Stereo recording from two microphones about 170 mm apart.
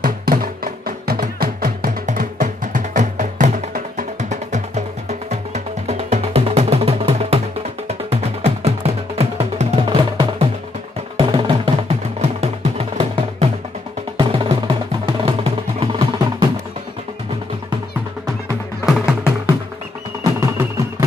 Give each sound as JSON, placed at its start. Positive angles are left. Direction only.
{"t": 0.0, "sound": "music", "side_deg": -55}
{"t": 2.0, "sound": "music", "side_deg": -50}
{"t": 18.9, "sound": "music", "side_deg": -5}
{"t": 20.2, "sound": "music", "side_deg": -15}